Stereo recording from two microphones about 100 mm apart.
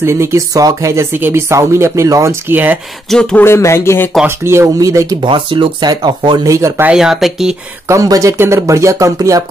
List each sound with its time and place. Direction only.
0.0 s speech: 25° right (ahead or behind)
2.4 s speech: 20° right (ahead or behind)
3.1 s speech: 5° left (ahead or behind)
3.3 s speech: 25° left (ahead or behind)
4.5 s speech: 30° right (ahead or behind)
5.2 s speech: 55° right (ahead or behind)
6.8 s speech: 5° right (ahead or behind)
7.9 s speech: 35° right (ahead or behind)